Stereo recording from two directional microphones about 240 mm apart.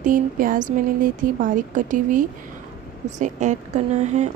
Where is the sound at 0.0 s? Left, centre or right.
Right.